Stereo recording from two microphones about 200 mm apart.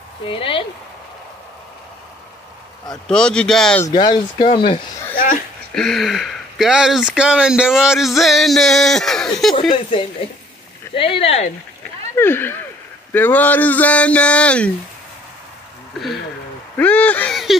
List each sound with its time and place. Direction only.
0.2 s speech: 25° left (ahead or behind)
3.1 s speech: 5° left (ahead or behind)
3.8 s speech: 20° left (ahead or behind)
5.1 s a sound: 45° left (ahead or behind)
5.8 s speech: centre (ahead or behind)
9.7 s speech: 25° left (ahead or behind)
12.2 s speech: 10° left (ahead or behind)
16.7 s a sound: 10° left (ahead or behind)